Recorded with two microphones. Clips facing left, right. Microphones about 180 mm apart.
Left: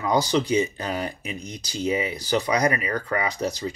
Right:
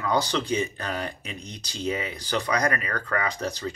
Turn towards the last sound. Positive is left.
turn(degrees=15)  # may be behind; listen again after turning